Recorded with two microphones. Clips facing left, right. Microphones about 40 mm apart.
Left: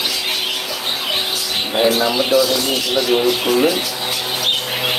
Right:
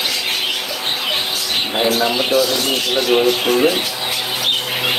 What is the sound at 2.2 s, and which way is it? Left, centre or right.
Speech, right.